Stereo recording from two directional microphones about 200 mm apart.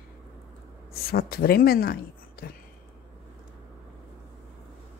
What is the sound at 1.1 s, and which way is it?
Speech, 50° left (ahead or behind).